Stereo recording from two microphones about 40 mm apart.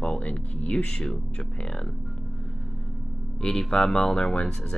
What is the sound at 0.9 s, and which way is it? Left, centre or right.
Speech, centre.